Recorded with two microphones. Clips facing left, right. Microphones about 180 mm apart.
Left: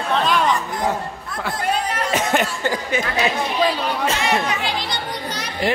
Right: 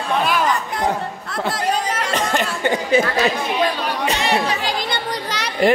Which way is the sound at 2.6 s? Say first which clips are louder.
Right 3 dB; 20° right (ahead or behind).